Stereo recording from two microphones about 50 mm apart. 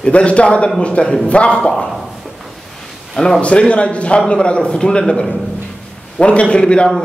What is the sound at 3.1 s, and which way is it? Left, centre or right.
Speech, centre.